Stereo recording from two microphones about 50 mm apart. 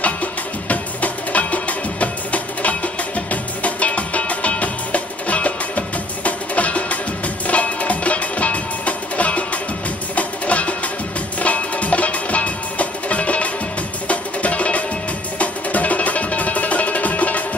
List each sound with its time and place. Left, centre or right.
0.0 s music: left